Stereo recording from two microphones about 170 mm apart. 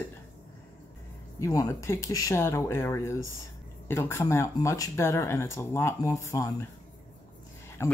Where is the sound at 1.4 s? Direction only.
20° left (ahead or behind).